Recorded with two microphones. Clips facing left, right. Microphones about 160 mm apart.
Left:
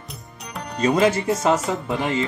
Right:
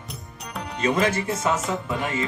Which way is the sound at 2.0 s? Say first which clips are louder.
Left 4 dB; 25° left (ahead or behind).